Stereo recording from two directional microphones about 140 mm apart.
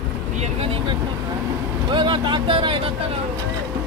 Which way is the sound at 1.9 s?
35° right (ahead or behind).